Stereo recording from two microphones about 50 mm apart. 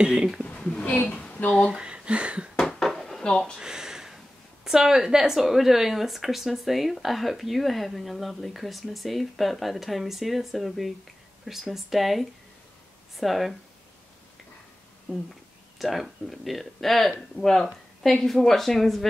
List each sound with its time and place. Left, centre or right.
0.0 s speech: centre
0.7 s a woman's voice: left
1.2 s a sound: left
1.7 s speech: centre
2.7 s dishes: centre
3.3 s a woman's voice: centre
3.5 s a sound: centre
4.6 s speech: centre
15.8 s speech: centre